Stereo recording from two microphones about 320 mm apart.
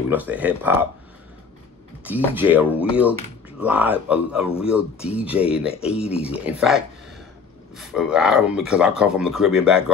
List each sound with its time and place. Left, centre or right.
0.1 s speech: centre
2.0 s speech: centre
6.1 s speech: centre
6.4 s speech: centre